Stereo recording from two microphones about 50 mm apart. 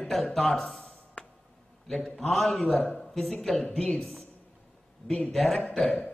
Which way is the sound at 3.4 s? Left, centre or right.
Centre.